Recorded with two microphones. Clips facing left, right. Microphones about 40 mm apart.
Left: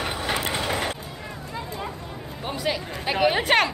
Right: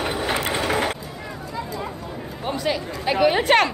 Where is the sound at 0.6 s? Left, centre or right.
Right.